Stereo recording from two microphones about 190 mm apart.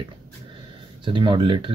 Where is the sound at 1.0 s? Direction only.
25° right (ahead or behind).